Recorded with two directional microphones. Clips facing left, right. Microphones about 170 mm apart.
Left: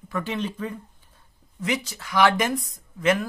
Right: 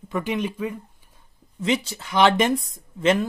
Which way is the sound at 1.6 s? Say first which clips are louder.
Right 4 dB; 25° right (ahead or behind).